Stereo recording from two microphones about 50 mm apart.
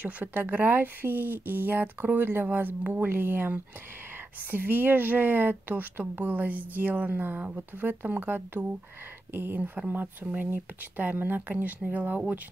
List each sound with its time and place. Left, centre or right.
0.0 s speech: right